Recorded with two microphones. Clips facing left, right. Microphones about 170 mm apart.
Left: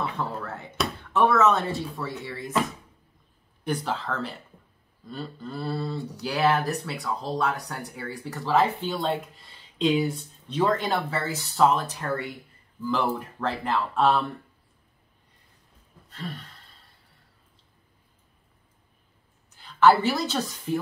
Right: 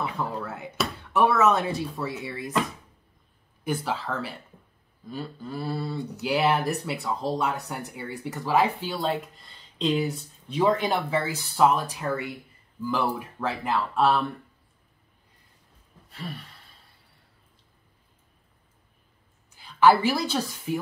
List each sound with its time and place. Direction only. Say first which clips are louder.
0.0 s speech: even; 10° right (ahead or behind)
3.6 s speech: even; 5° right (ahead or behind)
7.0 s speech: right 1 dB; 20° right (ahead or behind)
8.9 s speech: even; centre (ahead or behind)
16.1 s speech: left 1 dB; 10° right (ahead or behind)
19.5 s a woman's voice: even; 10° right (ahead or behind)